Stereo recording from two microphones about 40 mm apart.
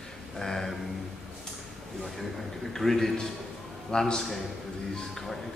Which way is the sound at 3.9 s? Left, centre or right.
Centre.